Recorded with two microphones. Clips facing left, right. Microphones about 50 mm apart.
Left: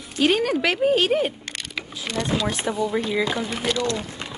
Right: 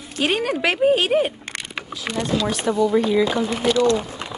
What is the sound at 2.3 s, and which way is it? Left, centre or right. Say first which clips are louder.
Speech: right 6 dB; centre.